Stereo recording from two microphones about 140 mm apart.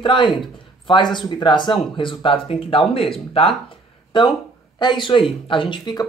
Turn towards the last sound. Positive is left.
turn(degrees=35)  # may be behind; listen again after turning